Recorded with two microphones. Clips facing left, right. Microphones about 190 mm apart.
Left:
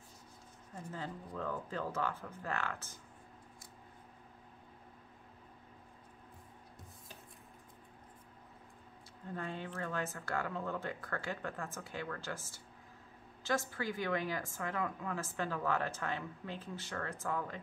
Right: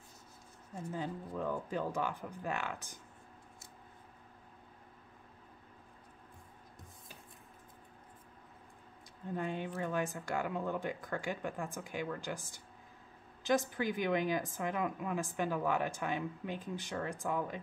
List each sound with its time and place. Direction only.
0.9 s a woman's voice: 15° right (ahead or behind)
9.3 s a woman's voice: 15° right (ahead or behind)